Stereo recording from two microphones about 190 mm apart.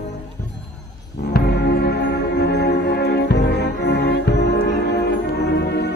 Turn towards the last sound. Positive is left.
turn(degrees=60)  # may be behind; listen again after turning